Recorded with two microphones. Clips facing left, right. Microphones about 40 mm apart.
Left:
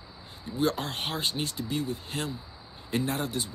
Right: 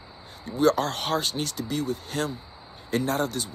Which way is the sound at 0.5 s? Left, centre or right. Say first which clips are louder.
Right 6 dB; centre.